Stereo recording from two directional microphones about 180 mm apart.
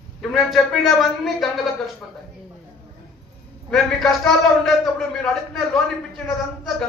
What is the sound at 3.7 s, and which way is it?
A man's voice, centre (ahead or behind).